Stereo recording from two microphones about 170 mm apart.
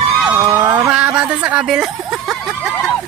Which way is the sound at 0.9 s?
5° right (ahead or behind).